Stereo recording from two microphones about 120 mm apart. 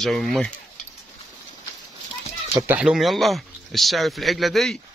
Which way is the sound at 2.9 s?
Centre (ahead or behind).